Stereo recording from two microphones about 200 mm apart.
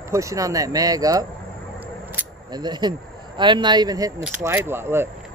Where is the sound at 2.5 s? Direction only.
20° right (ahead or behind).